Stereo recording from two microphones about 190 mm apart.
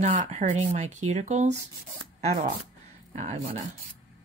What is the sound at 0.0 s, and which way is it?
Speech, 40° right (ahead or behind).